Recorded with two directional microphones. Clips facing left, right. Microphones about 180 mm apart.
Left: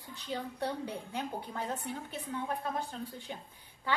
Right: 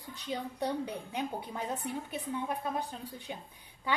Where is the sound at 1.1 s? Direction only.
15° right (ahead or behind).